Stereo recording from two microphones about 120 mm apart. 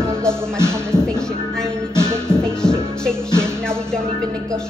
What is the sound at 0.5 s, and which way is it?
Music, 20° right (ahead or behind).